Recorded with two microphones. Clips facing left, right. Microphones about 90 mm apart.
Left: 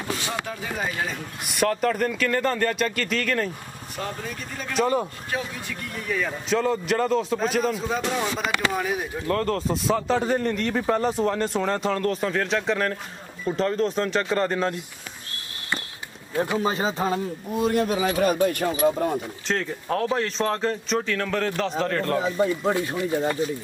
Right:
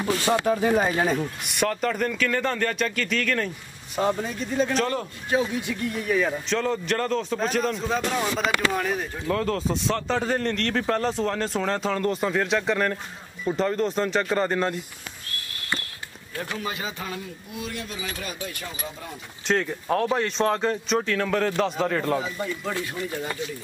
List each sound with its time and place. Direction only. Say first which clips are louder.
0.3 s speech: right 10 dB; 40° right (ahead or behind)
1.5 s a man's voice: left 3 dB; centre (ahead or behind)
3.9 s speech: right 7 dB; 25° right (ahead or behind)
6.5 s a man's voice: left 7 dB; 5° left (ahead or behind)
16.3 s speech: left 7 dB; 25° left (ahead or behind); by 19.2 s 50° left (ahead or behind)
19.4 s a man's voice: right 2 dB; centre (ahead or behind)
22.2 s speech: left 7 dB; 25° left (ahead or behind)